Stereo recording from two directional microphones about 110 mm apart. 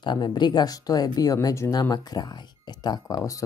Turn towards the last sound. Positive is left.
turn(degrees=30)  # may be behind; listen again after turning